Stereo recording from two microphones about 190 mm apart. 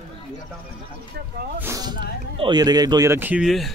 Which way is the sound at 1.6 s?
15° right (ahead or behind).